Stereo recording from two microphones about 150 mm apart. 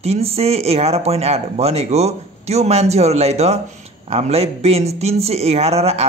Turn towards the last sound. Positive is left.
turn(degrees=-45)  # may be behind; listen again after turning